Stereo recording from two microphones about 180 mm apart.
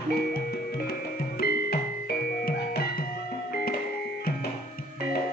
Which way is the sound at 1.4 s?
60° left (ahead or behind).